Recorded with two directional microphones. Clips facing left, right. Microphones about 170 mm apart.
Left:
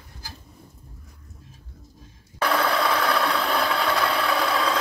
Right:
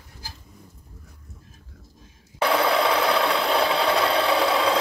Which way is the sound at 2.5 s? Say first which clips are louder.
Right 2 dB; 20° right (ahead or behind).